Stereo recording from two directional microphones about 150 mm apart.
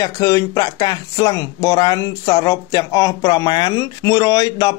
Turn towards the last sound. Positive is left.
turn(degrees=25)  # may be behind; listen again after turning